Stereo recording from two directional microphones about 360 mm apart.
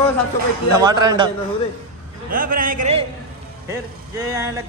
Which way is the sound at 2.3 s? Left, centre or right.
Right.